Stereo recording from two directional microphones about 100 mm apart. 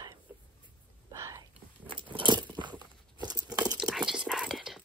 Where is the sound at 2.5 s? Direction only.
50° right (ahead or behind).